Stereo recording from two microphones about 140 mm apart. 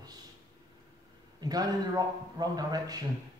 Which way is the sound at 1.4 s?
30° right (ahead or behind).